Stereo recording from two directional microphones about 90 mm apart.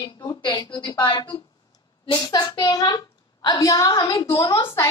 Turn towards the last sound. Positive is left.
turn(degrees=25)  # may be behind; listen again after turning